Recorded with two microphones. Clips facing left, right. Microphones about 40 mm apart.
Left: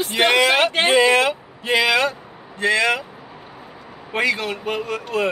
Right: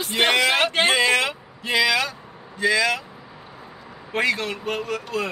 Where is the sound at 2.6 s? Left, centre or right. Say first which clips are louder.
Left 2 dB; left.